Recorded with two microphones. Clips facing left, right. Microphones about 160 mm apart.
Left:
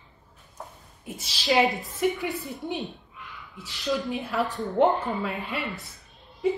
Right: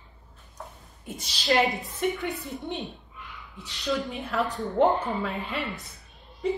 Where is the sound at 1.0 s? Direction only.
Centre (ahead or behind).